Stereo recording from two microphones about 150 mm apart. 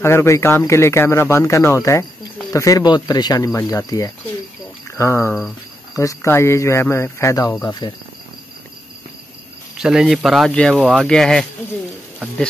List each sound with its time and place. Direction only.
0.0 s speech: 15° left (ahead or behind)
7.8 s speech: 30° left (ahead or behind)
9.8 s speech: 5° right (ahead or behind)